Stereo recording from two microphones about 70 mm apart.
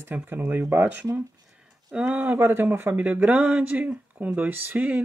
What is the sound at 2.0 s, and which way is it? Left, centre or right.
Speech, right.